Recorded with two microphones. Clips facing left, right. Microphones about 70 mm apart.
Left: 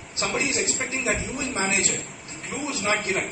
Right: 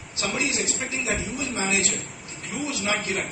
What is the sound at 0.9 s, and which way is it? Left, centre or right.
A man's voice, left.